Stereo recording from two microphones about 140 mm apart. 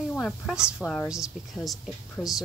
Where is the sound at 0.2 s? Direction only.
5° right (ahead or behind).